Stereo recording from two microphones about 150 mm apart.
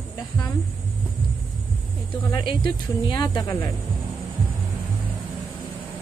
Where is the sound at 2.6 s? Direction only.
30° left (ahead or behind).